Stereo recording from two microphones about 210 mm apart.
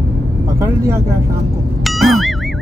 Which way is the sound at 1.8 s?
Centre (ahead or behind).